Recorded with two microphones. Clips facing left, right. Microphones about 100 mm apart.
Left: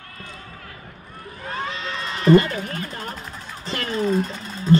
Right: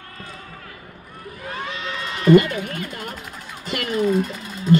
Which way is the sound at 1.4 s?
35° left (ahead or behind).